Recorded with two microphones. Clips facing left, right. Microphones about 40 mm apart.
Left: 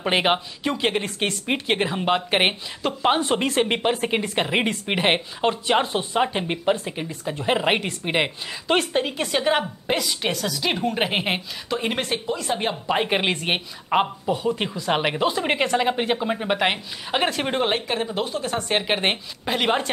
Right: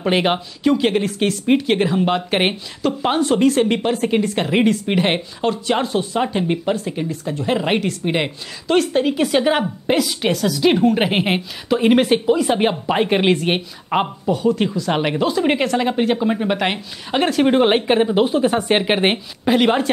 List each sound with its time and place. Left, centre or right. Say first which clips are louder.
0.0 s speech: right 3 dB; centre
9.0 s a woman's voice: right 6 dB; centre; by 12.7 s right
12.8 s a woman's voice: right 5 dB; centre
14.3 s a woman's voice: right 8 dB; centre
17.6 s speech: right 9 dB; right; by 19.9 s centre